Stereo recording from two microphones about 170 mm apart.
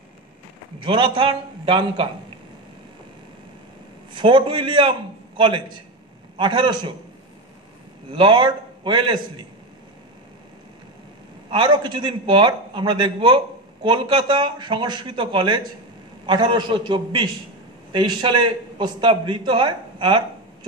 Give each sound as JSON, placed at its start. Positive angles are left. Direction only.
{"t": 0.7, "sound": "a man's voice", "side_deg": -30}
{"t": 4.1, "sound": "a man's voice", "side_deg": -30}
{"t": 8.1, "sound": "a man's voice", "side_deg": -30}
{"t": 11.5, "sound": "a man's voice", "side_deg": -25}